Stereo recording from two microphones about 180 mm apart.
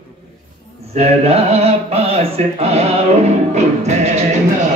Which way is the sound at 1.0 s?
35° right (ahead or behind).